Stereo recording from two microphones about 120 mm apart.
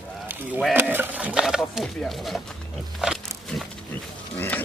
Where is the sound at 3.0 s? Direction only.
Centre (ahead or behind).